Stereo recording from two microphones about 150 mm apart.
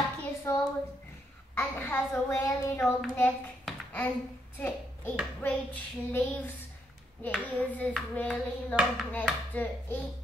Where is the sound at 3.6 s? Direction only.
10° left (ahead or behind).